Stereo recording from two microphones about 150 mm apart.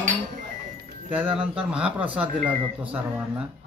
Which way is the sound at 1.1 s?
10° right (ahead or behind).